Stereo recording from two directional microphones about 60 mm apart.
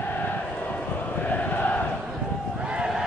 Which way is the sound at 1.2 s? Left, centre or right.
Left.